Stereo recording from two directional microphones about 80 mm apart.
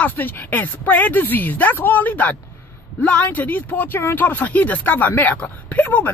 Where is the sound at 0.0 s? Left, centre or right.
Left.